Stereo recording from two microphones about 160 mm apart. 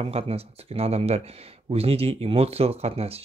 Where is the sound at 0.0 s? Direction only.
40° right (ahead or behind).